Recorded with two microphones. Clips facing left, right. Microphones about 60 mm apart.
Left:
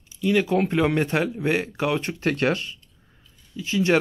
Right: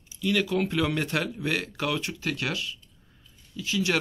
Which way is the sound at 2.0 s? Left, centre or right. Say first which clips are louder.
Left 8 dB; left.